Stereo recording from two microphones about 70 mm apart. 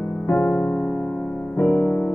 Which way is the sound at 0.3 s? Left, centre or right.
Left.